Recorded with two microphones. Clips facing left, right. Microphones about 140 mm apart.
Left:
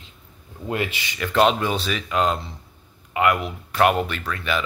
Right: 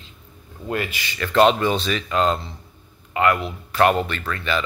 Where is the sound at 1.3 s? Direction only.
5° left (ahead or behind).